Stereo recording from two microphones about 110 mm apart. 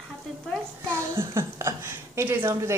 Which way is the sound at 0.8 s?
20° right (ahead or behind).